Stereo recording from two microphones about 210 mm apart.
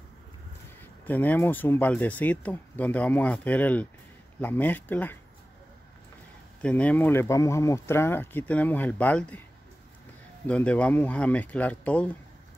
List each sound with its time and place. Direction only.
1.0 s speech: 10° left (ahead or behind)
6.6 s speech: 5° left (ahead or behind)
10.4 s speech: 5° left (ahead or behind)